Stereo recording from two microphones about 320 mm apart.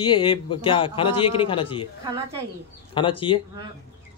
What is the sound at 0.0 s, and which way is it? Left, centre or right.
A man's voice, centre.